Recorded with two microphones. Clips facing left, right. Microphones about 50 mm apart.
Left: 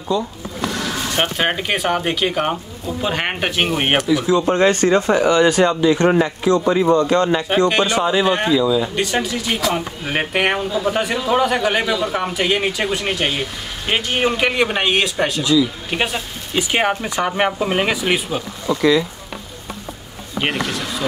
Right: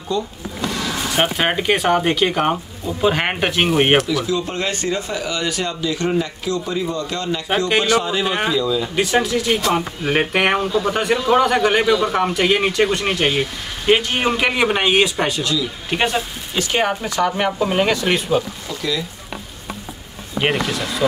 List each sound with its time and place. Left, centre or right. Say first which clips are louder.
1.1 s a man's voice: right 1 dB; centre
4.0 s speech: left 3 dB; centre
4.3 s speech: left 7 dB; left
8.1 s speech: left 3 dB; centre
8.9 s a man's voice: right 3 dB; centre
16.5 s speech: left 1 dB; centre
18.8 s speech: left 8 dB; left
20.3 s a man's voice: right 2 dB; centre